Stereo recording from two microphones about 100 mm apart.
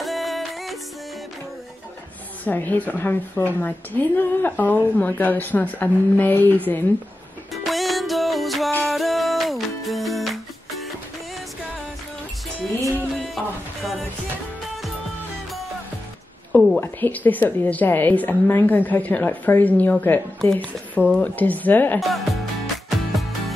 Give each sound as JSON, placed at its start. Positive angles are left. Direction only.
{"t": 0.0, "sound": "music", "side_deg": 0}
{"t": 2.4, "sound": "a woman's voice", "side_deg": 20}
{"t": 7.5, "sound": "music", "side_deg": 0}
{"t": 13.1, "sound": "a sound", "side_deg": 0}
{"t": 16.8, "sound": "a woman's voice", "side_deg": 20}
{"t": 22.0, "sound": "music", "side_deg": 0}